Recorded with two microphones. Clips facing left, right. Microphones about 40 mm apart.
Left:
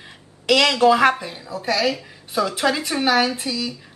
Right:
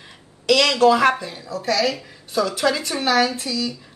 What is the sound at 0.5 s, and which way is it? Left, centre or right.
Speech, centre.